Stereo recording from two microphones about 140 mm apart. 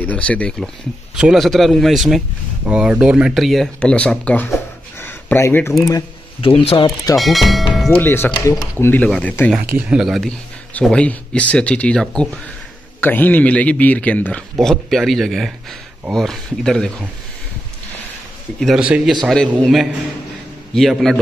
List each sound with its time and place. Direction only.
0.0 s a man's voice: 10° left (ahead or behind)
1.1 s speech: 5° right (ahead or behind)
5.0 s a sound: 15° left (ahead or behind)
6.4 s speech: 45° left (ahead or behind)
7.2 s speech: centre (ahead or behind)
7.9 s a man's voice: 15° left (ahead or behind)
9.8 s a man's voice: 5° right (ahead or behind)
18.6 s speech: 5° right (ahead or behind)
19.2 s speech: 5° left (ahead or behind)
20.7 s speech: centre (ahead or behind)